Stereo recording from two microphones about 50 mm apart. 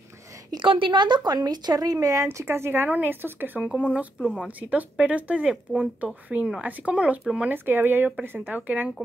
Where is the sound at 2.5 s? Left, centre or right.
Right.